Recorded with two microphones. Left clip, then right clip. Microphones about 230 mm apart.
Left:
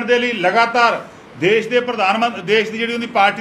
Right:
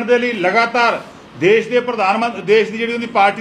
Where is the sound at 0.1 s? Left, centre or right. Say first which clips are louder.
Right 1 dB; right.